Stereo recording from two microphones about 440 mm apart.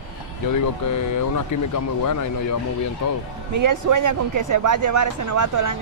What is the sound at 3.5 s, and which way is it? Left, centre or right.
Speech, right.